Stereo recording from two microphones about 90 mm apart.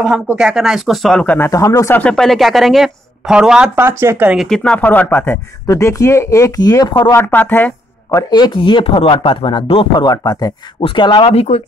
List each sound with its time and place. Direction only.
0.4 s speech: 5° right (ahead or behind)
1.2 s speech: 20° left (ahead or behind)
1.5 s speech: 40° left (ahead or behind)
2.0 s speech: 10° left (ahead or behind); by 3.7 s 10° right (ahead or behind)
3.7 s speech: 25° right (ahead or behind)
4.4 s speech: 5° left (ahead or behind)
4.7 s speech: 20° left (ahead or behind)
5.7 s speech: 35° left (ahead or behind)
7.1 s speech: 25° left (ahead or behind)
8.3 s speech: 50° left (ahead or behind)
8.5 s speech: 80° left
9.9 s speech: 50° left (ahead or behind)
10.8 s speech: 70° left (ahead or behind)